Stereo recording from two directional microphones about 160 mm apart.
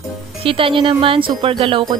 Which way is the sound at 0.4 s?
35° right (ahead or behind).